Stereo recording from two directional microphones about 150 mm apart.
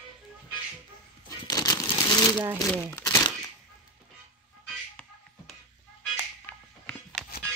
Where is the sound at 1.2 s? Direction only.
25° left (ahead or behind).